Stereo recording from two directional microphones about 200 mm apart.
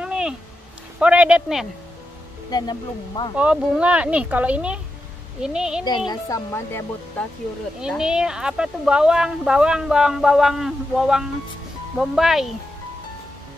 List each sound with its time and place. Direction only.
0.0 s a sound: 5° right (ahead or behind)
0.9 s speech: 5° right (ahead or behind)
2.5 s speech: 20° left (ahead or behind)
3.3 s speech: 5° right (ahead or behind)
5.9 s speech: 20° left (ahead or behind)
7.8 s speech: 5° right (ahead or behind)